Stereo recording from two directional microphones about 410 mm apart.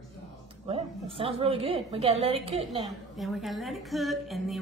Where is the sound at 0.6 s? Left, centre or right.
Centre.